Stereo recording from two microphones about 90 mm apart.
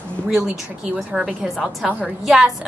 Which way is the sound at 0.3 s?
10° right (ahead or behind).